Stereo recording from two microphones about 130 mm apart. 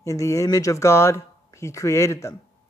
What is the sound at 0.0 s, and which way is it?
Speech, 25° left (ahead or behind).